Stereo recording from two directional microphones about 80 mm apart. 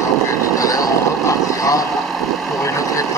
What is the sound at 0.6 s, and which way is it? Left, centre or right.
Vehicle, left.